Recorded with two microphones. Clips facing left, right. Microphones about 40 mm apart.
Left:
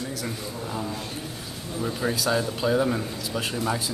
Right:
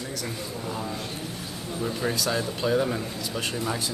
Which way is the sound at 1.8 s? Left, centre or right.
Centre.